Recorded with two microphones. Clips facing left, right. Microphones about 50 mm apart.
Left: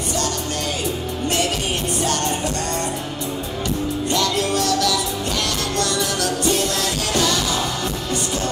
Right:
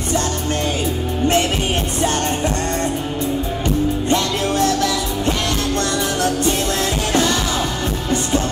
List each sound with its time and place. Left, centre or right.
2.0 s music: right
4.1 s music: right